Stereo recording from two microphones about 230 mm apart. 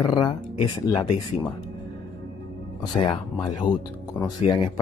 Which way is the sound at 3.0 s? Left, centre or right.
Centre.